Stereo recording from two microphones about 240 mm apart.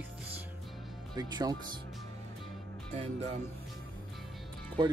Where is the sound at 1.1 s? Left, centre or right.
Centre.